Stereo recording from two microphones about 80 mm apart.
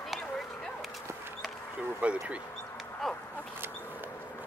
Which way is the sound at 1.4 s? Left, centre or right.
Centre.